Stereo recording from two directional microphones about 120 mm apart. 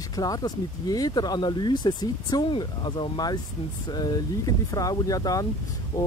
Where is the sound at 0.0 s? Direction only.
30° left (ahead or behind).